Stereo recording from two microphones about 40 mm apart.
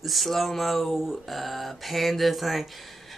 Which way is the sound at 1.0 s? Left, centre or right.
Centre.